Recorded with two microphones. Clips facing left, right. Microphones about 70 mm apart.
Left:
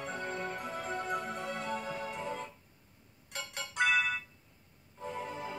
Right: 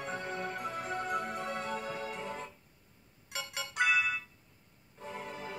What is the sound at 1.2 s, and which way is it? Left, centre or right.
Music, right.